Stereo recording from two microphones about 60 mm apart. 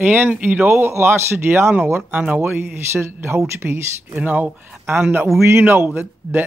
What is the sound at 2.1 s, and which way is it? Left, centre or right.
Speech, right.